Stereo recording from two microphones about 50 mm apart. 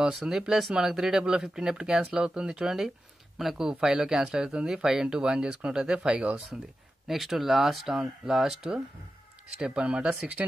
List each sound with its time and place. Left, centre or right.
0.0 s speech: centre
7.1 s speech: centre
9.6 s speech: right